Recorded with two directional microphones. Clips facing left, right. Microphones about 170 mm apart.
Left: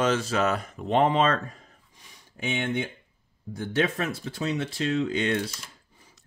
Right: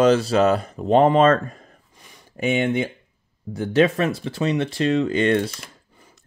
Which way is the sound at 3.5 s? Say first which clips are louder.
Right 8 dB; 85° right.